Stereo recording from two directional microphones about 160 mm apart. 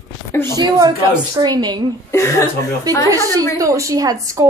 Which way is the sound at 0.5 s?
25° right (ahead or behind).